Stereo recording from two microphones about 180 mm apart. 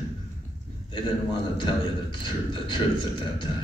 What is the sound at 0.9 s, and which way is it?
A man's voice, 25° left (ahead or behind).